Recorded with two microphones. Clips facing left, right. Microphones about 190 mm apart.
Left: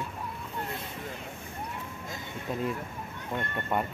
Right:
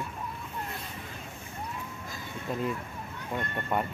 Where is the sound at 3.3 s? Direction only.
Centre (ahead or behind).